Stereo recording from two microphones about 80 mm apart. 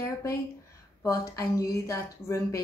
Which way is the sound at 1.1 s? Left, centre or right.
Left.